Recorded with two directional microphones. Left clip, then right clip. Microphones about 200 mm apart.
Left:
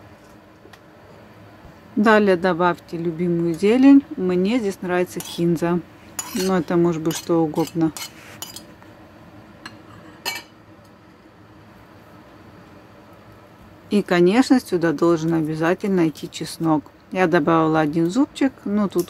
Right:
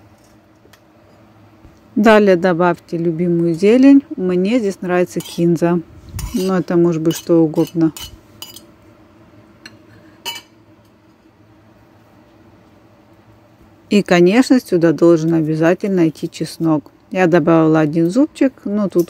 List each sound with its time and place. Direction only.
2.0 s speech: 25° right (ahead or behind)
13.8 s speech: 30° right (ahead or behind)